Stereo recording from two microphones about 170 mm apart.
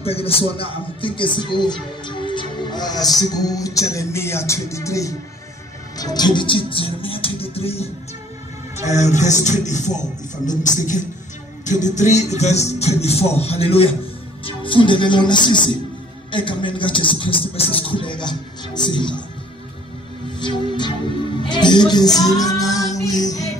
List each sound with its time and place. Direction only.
0.0 s a man's voice: 35° left (ahead or behind)
11.6 s a man's voice: 45° left (ahead or behind); by 19.2 s 30° left (ahead or behind)
20.3 s speech: 25° left (ahead or behind)
22.2 s music: 20° left (ahead or behind)